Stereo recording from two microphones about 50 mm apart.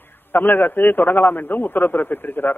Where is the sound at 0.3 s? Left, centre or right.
Left.